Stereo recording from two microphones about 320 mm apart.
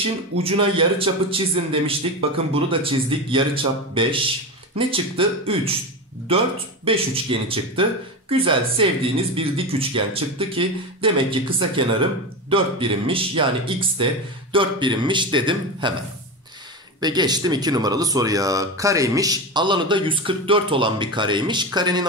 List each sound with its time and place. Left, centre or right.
0.4 s speech: centre
17.0 s speech: centre